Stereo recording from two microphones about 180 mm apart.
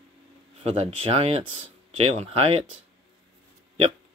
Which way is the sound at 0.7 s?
35° right (ahead or behind).